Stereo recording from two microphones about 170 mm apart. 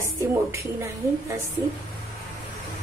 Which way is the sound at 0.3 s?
15° right (ahead or behind).